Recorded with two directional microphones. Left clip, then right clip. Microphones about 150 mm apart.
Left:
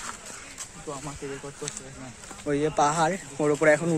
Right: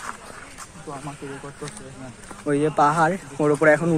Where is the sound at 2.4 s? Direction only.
5° left (ahead or behind).